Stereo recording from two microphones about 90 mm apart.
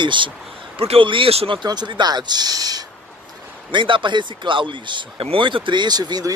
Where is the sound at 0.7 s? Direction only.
90° right.